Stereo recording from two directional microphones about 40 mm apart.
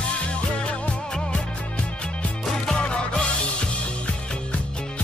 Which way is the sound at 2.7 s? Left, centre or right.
Left.